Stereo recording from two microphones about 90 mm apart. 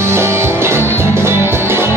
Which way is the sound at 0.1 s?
30° right (ahead or behind).